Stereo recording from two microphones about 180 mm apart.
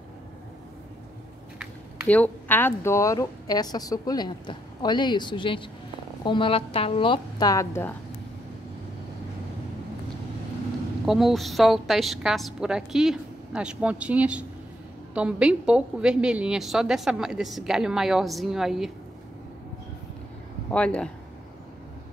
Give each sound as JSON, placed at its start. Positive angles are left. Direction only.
{"t": 2.0, "sound": "speech", "side_deg": 10}
{"t": 11.1, "sound": "a woman's voice", "side_deg": 0}
{"t": 20.7, "sound": "a woman's voice", "side_deg": 5}